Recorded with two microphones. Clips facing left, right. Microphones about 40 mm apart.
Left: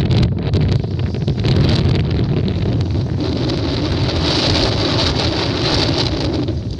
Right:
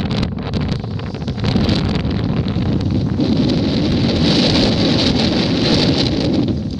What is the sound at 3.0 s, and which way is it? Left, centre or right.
Wind noise, right.